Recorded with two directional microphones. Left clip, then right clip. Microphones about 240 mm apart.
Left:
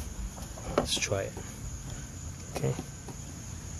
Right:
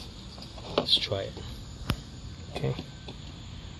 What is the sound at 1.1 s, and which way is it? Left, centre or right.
Cricket, centre.